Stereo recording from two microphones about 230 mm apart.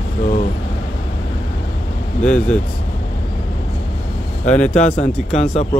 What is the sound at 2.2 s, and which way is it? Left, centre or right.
Speech, centre.